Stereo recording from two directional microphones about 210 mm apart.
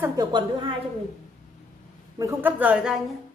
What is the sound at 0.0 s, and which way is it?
Speech, 15° right (ahead or behind).